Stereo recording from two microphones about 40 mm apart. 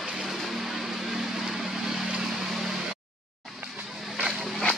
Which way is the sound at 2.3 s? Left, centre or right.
Centre.